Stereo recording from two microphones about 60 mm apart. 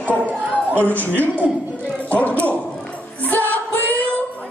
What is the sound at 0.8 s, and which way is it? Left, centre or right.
Speech, left.